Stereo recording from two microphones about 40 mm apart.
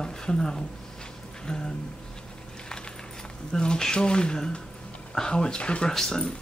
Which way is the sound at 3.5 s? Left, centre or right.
Centre.